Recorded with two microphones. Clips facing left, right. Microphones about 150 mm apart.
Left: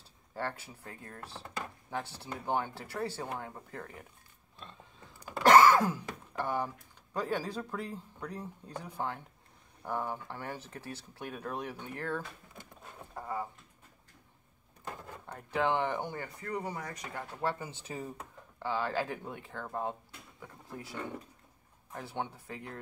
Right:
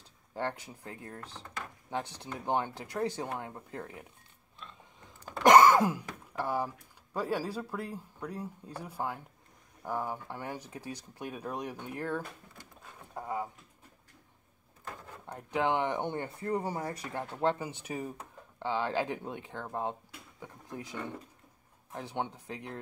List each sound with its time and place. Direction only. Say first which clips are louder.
0.3 s speech: right 2 dB; 15° right (ahead or behind)
5.4 s wail: right 1 dB; 15° right (ahead or behind)
7.2 s speech: right 1 dB; 10° right (ahead or behind)
13.1 s a sound: right 2 dB; 15° right (ahead or behind)
15.2 s speech: right 1 dB; 15° right (ahead or behind)
21.9 s speech: right 2 dB; 15° right (ahead or behind)